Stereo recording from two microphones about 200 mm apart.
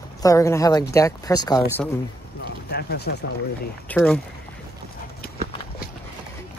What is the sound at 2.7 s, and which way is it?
Speech, 55° left (ahead or behind).